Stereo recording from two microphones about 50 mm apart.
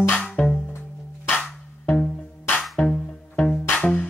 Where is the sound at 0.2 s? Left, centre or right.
Centre.